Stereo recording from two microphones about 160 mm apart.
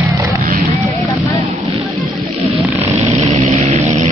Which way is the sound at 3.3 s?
40° right (ahead or behind).